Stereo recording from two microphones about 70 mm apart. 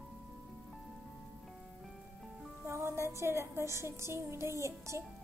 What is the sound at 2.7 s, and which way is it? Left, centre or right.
Music, right.